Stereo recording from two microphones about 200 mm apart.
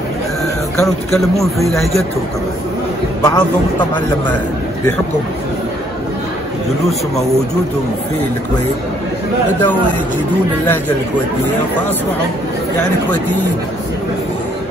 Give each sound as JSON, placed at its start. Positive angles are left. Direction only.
{"t": 0.7, "sound": "speech", "side_deg": 0}
{"t": 3.2, "sound": "a man's voice", "side_deg": 20}